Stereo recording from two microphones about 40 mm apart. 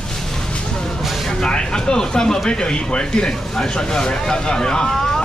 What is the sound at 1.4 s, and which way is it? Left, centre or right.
Speech, left.